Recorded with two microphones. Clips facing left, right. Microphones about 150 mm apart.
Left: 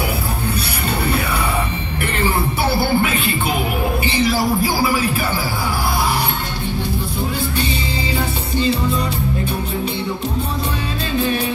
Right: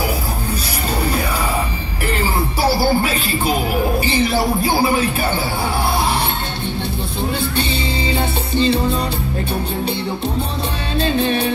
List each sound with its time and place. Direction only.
2.2 s music: 35° right (ahead or behind)
4.0 s a sound: 45° right (ahead or behind)
4.6 s music: 25° right (ahead or behind)
8.1 s music: 30° right (ahead or behind)